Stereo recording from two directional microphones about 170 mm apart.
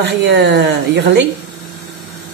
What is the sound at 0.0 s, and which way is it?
A woman's voice, 85° right.